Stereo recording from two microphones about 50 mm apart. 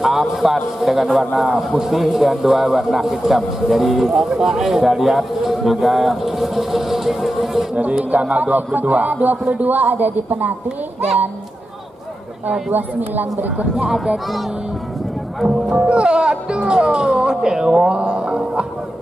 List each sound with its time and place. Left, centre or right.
0.0 s a man's voice: centre
7.7 s a man's voice: right
12.7 s a man's voice: right
13.7 s speech: centre
15.4 s speech: centre